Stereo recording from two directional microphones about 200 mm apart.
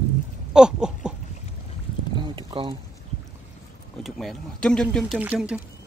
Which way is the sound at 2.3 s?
25° right (ahead or behind).